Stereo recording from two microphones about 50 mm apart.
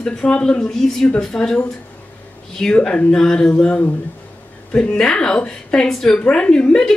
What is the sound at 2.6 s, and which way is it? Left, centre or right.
A woman's voice, centre.